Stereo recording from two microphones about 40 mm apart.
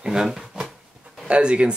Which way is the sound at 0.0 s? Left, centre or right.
Centre.